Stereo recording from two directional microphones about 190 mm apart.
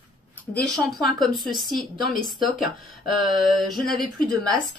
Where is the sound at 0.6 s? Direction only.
Centre (ahead or behind).